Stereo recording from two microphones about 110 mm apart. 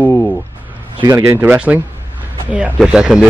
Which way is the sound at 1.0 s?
25° right (ahead or behind).